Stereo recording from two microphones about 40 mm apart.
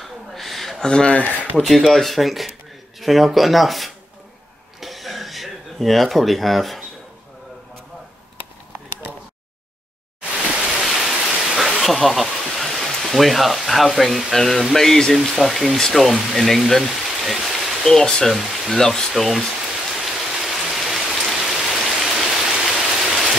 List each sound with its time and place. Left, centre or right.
0.0 s a sound: centre
0.8 s speech: centre
1.6 s speech: centre
4.7 s a sound: centre
10.8 s rain: centre
11.8 s speech: centre
17.8 s speech: centre
20.0 s rain: centre